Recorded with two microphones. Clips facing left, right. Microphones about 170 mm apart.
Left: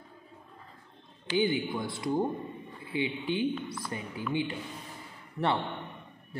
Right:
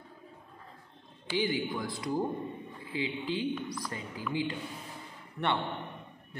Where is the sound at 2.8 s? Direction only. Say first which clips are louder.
Left 4 dB; 25° left (ahead or behind).